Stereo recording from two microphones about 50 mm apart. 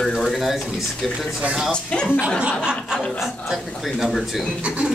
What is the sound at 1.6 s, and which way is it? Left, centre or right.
Speech, centre.